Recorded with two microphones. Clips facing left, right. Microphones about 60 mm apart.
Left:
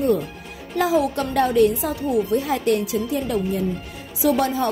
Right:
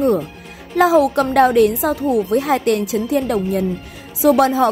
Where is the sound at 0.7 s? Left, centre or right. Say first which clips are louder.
Right 7 dB; right.